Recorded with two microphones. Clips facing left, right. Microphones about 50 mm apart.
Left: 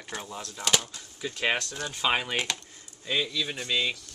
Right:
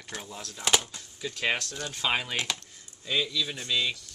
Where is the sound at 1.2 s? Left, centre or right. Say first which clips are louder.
Left 1 dB; centre.